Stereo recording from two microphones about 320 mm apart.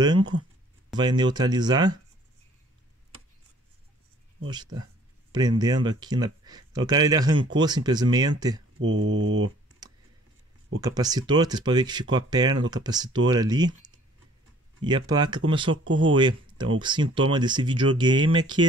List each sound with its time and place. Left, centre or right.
0.0 s speech: centre
4.5 s speech: centre
8.8 s speech: right
10.8 s speech: centre